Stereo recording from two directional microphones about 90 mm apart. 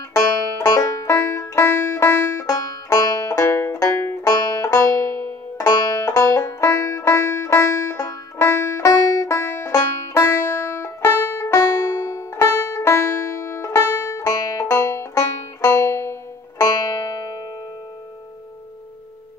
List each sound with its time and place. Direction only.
0.1 s banjo: 40° left (ahead or behind)
1.0 s banjo: 30° left (ahead or behind)
2.4 s banjo: 45° left (ahead or behind)
10.1 s music: 25° left (ahead or behind)